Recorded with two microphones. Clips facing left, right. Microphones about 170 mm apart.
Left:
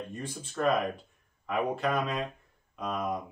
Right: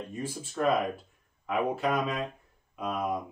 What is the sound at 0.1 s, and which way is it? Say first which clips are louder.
Speech: right 3 dB; 5° right (ahead or behind).